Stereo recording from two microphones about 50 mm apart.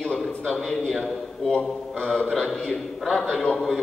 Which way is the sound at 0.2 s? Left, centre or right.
Centre.